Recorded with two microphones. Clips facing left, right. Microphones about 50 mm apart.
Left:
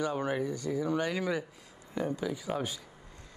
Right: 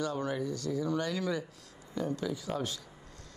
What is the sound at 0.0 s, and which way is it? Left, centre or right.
Speech, left.